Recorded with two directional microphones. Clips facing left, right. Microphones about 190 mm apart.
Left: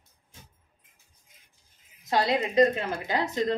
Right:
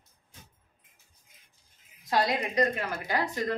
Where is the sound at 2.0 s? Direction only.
25° left (ahead or behind).